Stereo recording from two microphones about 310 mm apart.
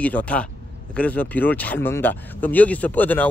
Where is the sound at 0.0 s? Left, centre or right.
Centre.